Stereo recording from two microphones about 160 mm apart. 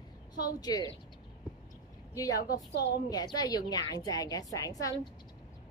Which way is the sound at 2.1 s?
20° left (ahead or behind).